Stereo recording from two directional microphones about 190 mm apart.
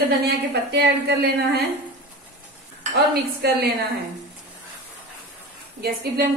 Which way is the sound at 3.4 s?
60° right (ahead or behind).